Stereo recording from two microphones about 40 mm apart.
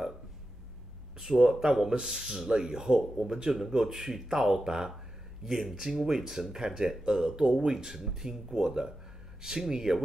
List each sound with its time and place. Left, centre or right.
1.2 s speech: centre